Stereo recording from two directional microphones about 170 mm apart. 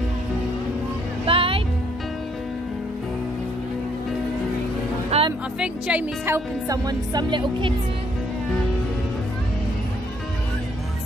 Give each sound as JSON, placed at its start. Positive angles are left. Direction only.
{"t": 1.2, "sound": "music", "side_deg": -35}
{"t": 5.1, "sound": "music", "side_deg": -40}
{"t": 5.6, "sound": "speech", "side_deg": -5}